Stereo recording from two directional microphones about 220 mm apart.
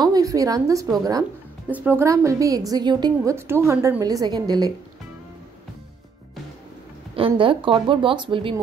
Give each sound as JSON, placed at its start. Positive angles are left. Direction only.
{"t": 0.0, "sound": "a woman's voice", "side_deg": -15}
{"t": 7.2, "sound": "speech", "side_deg": -25}